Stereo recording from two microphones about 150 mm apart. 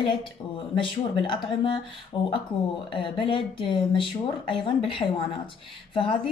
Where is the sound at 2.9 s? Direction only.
35° left (ahead or behind).